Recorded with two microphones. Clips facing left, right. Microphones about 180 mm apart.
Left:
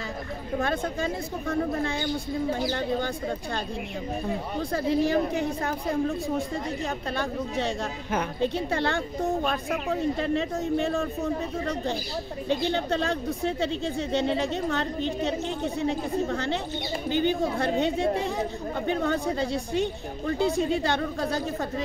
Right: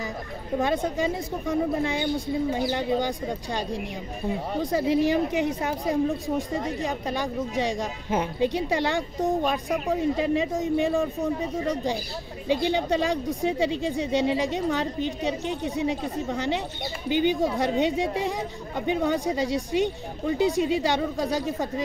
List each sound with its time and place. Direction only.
0.6 s speech: 20° right (ahead or behind)